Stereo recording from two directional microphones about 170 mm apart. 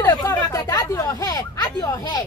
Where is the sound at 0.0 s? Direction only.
20° left (ahead or behind).